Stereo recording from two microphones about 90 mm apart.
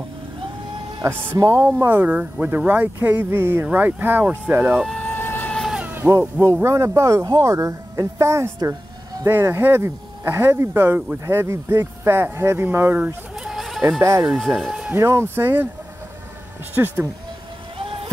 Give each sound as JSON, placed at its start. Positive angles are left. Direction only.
{"t": 1.0, "sound": "speech", "side_deg": -30}
{"t": 1.9, "sound": "speech", "side_deg": -20}
{"t": 4.9, "sound": "music", "side_deg": 20}
{"t": 5.5, "sound": "cat", "side_deg": 5}
{"t": 5.9, "sound": "a sound", "side_deg": -25}
{"t": 6.5, "sound": "speech", "side_deg": -30}
{"t": 13.4, "sound": "chicken", "side_deg": -5}
{"t": 14.2, "sound": "speech", "side_deg": -5}
{"t": 15.0, "sound": "speech", "side_deg": -30}
{"t": 16.7, "sound": "speech", "side_deg": -25}
{"t": 17.7, "sound": "vehicle", "side_deg": -90}